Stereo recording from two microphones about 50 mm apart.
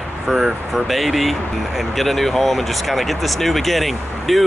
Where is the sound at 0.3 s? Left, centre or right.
Centre.